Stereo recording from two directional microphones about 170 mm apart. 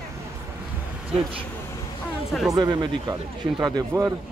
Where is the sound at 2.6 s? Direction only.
25° right (ahead or behind).